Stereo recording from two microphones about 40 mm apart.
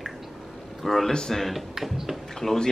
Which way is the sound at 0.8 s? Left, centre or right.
Centre.